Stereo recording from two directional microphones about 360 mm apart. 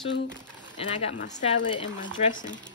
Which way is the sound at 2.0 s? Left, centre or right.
Left.